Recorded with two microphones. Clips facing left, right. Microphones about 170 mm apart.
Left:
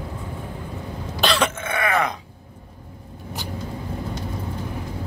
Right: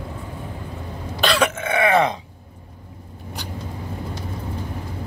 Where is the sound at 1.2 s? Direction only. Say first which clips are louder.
Right 2 dB; 10° right (ahead or behind); by 2.1 s 25° right (ahead or behind).